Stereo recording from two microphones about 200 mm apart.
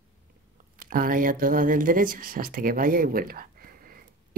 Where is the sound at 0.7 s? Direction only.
45° right (ahead or behind).